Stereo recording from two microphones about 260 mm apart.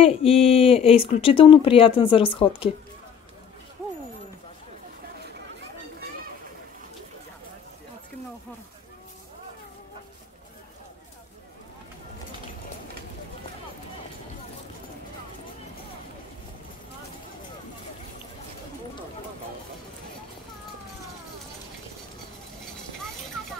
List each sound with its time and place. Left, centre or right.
0.0 s speech: left